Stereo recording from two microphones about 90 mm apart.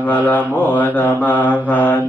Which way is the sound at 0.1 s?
20° left (ahead or behind).